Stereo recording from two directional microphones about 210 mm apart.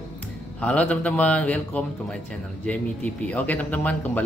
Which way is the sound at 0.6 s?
5° left (ahead or behind).